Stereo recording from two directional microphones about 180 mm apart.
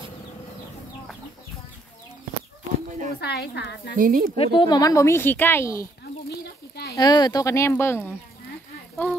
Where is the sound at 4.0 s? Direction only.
50° right (ahead or behind).